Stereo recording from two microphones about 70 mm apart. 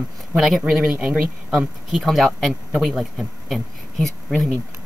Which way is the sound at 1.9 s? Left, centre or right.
Centre.